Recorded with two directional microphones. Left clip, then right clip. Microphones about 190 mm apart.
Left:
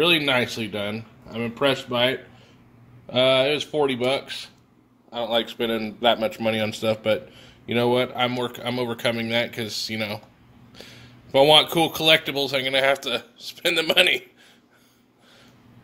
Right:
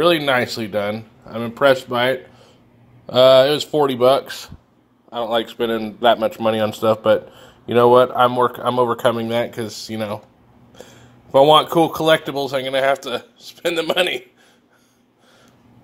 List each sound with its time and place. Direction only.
0.0 s speech: 20° right (ahead or behind); by 4.5 s 40° right (ahead or behind)
5.1 s speech: 20° right (ahead or behind)